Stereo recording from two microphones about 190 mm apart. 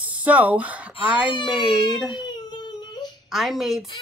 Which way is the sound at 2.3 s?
20° left (ahead or behind).